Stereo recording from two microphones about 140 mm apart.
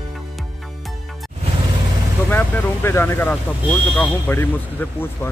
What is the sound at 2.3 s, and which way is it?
Speech, 15° left (ahead or behind).